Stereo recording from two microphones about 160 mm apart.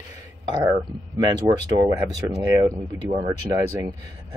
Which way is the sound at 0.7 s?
20° right (ahead or behind).